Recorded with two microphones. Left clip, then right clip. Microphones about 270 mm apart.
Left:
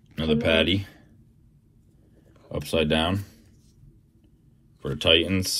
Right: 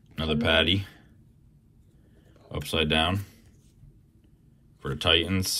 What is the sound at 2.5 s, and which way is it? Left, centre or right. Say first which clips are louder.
Speech: left 2 dB; centre.